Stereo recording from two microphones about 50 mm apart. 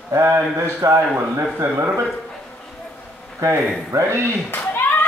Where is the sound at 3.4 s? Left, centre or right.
Right.